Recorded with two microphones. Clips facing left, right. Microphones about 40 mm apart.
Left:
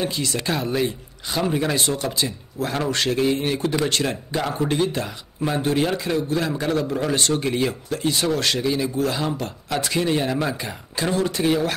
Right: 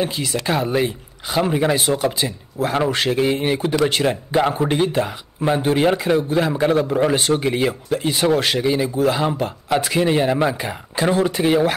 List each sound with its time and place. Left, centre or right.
0.0 s speech: centre